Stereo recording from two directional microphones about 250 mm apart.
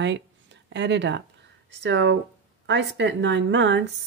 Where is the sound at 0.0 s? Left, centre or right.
Right.